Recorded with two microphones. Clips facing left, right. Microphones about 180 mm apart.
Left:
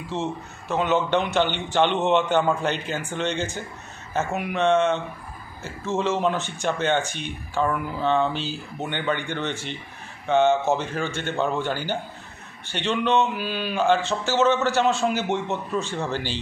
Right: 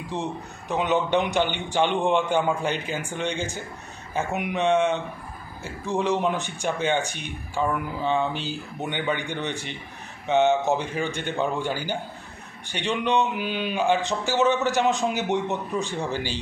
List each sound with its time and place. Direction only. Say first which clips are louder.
0.1 s speech: left 2 dB; 15° right (ahead or behind)